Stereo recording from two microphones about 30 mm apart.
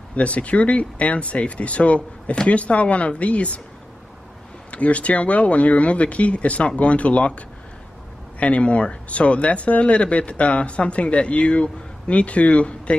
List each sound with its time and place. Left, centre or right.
0.1 s speech: left
4.6 s speech: left